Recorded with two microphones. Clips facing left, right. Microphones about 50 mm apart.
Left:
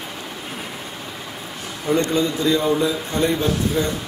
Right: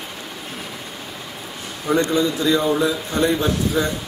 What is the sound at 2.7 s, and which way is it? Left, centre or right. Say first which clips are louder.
Speech: right 1 dB; right.